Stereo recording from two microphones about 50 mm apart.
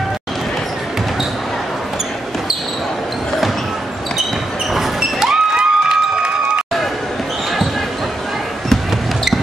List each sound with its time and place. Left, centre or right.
4.7 s music: centre